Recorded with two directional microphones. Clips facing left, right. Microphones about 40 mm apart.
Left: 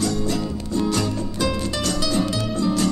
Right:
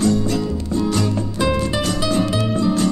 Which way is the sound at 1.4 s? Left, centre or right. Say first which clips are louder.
Right 4 dB; right.